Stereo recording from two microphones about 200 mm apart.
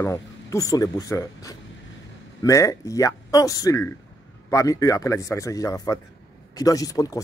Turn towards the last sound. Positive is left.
turn(degrees=15)  # may be behind; listen again after turning